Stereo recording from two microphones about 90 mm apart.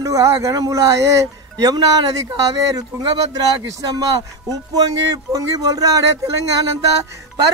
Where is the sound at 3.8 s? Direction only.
45° right (ahead or behind).